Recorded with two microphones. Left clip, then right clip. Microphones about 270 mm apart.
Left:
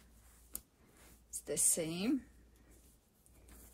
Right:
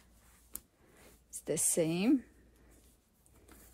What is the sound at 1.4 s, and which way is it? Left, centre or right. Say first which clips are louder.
Speech: right 5 dB; right.